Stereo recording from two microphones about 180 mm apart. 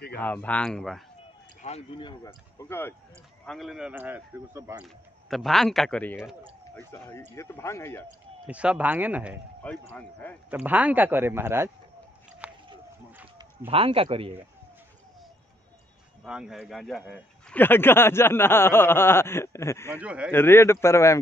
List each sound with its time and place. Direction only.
0.2 s speech: 10° left (ahead or behind)
1.6 s speech: 35° left (ahead or behind)
3.4 s speech: centre (ahead or behind)
4.8 s speech: centre (ahead or behind)
8.5 s speech: 5° right (ahead or behind)
9.6 s speech: 10° left (ahead or behind)
10.5 s speech: 10° right (ahead or behind)
12.4 s a sound: 10° right (ahead or behind)
13.7 s a man's voice: 30° right (ahead or behind)
16.3 s speech: 5° right (ahead or behind); by 20.0 s 15° left (ahead or behind)
20.0 s speech: 5° right (ahead or behind)
20.2 s speech: 15° left (ahead or behind)